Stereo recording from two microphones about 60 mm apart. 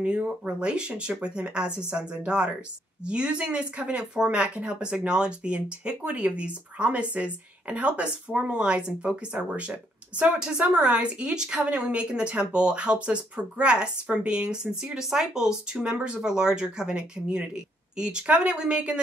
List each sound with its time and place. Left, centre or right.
0.0 s a woman's voice: centre